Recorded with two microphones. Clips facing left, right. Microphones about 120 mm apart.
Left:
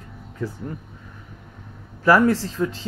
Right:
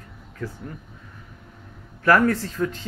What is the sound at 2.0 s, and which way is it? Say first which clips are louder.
Speech: left 2 dB; 10° left (ahead or behind).